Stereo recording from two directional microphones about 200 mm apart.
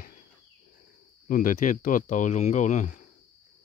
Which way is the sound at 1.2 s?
40° left (ahead or behind).